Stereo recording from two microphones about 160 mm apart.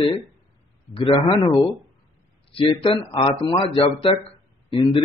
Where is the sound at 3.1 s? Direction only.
30° left (ahead or behind).